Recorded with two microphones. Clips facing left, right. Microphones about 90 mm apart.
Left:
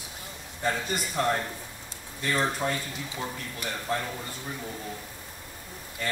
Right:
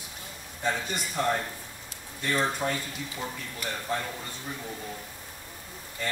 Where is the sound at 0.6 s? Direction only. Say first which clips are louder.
Left 1 dB; centre (ahead or behind).